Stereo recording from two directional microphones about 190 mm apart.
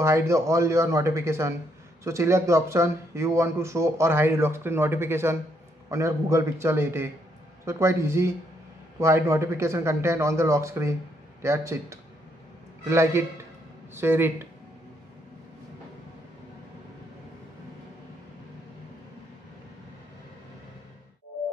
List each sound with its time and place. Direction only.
0.0 s speech: 15° right (ahead or behind)